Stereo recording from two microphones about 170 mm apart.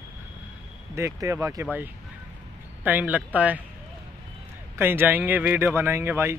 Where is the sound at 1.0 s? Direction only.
15° right (ahead or behind).